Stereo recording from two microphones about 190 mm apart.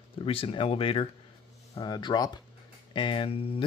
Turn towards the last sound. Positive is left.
turn(degrees=30)  # may be behind; listen again after turning